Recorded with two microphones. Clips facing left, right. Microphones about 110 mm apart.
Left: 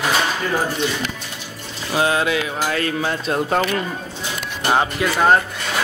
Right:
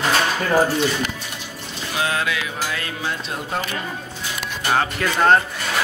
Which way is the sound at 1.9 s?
30° left (ahead or behind).